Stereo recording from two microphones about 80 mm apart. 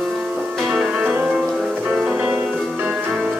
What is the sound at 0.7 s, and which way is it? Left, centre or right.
Music, centre.